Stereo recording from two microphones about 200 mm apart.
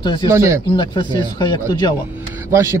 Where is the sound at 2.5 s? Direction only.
15° right (ahead or behind).